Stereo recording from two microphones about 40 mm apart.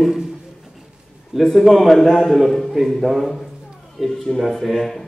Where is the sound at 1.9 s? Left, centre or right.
Centre.